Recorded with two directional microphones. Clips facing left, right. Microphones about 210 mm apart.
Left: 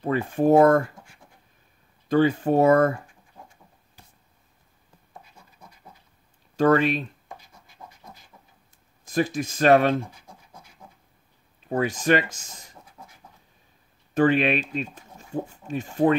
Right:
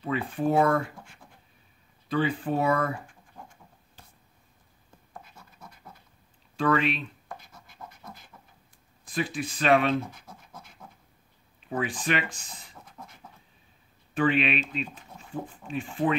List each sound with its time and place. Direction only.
0.0 s speech: 45° left (ahead or behind)
2.0 s speech: 45° left (ahead or behind)
6.5 s speech: 40° left (ahead or behind)
7.6 s scratch: 60° right (ahead or behind)
9.0 s speech: 40° left (ahead or behind)
11.7 s speech: 40° left (ahead or behind)
14.1 s speech: 40° left (ahead or behind)